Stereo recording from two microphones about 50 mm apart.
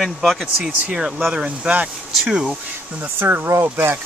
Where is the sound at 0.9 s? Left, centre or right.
Centre.